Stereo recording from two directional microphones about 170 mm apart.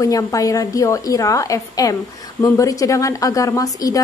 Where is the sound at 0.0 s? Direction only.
20° left (ahead or behind).